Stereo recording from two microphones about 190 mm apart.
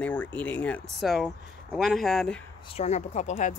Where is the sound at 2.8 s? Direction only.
35° left (ahead or behind).